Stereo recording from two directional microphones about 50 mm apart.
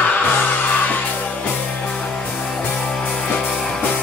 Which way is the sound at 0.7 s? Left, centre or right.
Left.